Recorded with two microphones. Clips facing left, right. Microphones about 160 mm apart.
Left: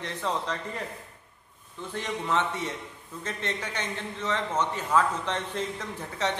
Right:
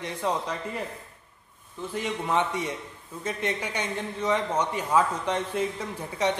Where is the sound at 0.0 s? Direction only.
10° right (ahead or behind).